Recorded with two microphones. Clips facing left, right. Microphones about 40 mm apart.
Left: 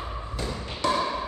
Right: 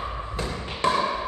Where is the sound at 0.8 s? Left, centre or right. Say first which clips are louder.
Right 2 dB; right.